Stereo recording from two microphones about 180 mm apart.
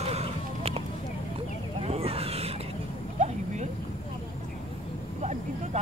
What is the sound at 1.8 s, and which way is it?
Vehicle, 35° right (ahead or behind).